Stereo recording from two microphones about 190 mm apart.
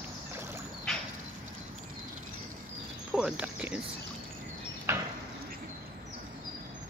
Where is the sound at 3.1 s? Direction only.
5° right (ahead or behind).